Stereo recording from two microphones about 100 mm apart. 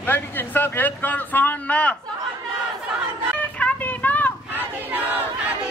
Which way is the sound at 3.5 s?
15° left (ahead or behind).